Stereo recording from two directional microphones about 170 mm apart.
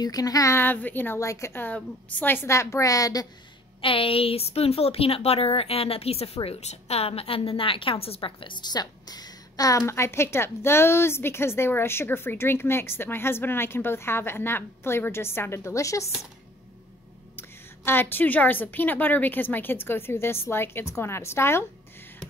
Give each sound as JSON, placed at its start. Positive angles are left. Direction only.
{"t": 0.0, "sound": "a woman's voice", "side_deg": 20}
{"t": 3.8, "sound": "a woman's voice", "side_deg": 30}
{"t": 17.4, "sound": "a woman's voice", "side_deg": 15}